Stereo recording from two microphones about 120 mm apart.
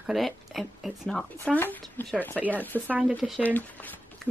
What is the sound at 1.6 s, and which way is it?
Speech, 15° left (ahead or behind).